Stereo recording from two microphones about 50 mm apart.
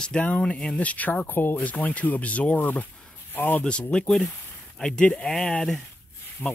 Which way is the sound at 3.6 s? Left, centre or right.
Centre.